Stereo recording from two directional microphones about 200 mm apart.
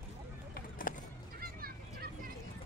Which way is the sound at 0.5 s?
45° left (ahead or behind).